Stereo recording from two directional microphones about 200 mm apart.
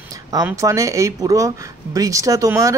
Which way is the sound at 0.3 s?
15° right (ahead or behind).